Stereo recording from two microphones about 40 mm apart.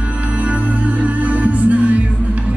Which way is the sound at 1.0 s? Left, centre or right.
Right.